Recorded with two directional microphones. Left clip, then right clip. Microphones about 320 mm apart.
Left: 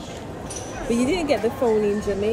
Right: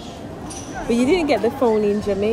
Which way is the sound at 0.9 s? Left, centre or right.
Right.